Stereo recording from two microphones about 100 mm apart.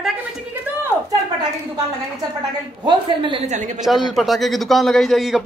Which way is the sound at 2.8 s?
55° right (ahead or behind).